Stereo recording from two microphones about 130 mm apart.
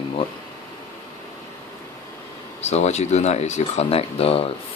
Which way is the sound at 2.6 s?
55° left (ahead or behind).